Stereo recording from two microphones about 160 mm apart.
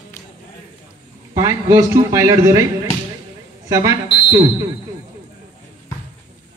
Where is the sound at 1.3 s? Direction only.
20° right (ahead or behind).